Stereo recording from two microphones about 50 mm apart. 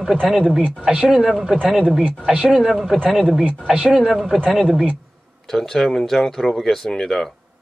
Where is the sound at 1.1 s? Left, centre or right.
Centre.